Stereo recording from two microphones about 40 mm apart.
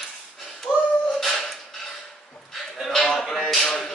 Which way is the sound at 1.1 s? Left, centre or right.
Centre.